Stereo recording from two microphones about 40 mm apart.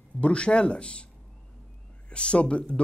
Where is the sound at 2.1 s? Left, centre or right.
Left.